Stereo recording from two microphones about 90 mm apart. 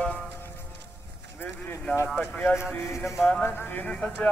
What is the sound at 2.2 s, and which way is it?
Music, 20° left (ahead or behind).